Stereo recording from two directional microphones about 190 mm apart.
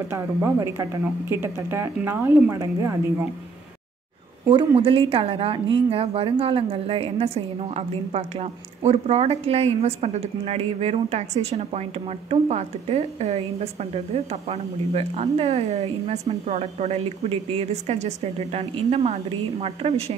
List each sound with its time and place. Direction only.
0.1 s speech: 15° right (ahead or behind)
4.5 s speech: 30° right (ahead or behind)